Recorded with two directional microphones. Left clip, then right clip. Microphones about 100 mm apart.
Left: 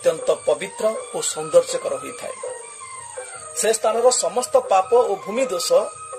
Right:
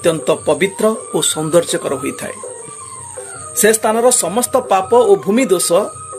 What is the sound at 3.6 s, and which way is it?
Speech, 15° right (ahead or behind).